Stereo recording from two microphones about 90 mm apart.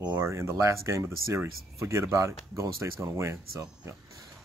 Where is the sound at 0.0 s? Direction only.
35° right (ahead or behind).